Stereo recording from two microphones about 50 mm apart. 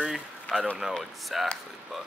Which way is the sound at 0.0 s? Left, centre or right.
Centre.